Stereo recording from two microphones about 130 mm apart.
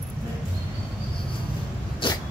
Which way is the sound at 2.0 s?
40° left (ahead or behind).